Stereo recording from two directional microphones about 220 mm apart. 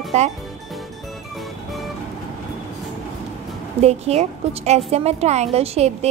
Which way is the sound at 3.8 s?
30° right (ahead or behind).